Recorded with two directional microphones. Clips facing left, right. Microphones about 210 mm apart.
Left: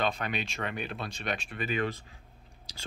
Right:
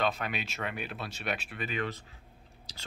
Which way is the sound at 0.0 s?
5° right (ahead or behind).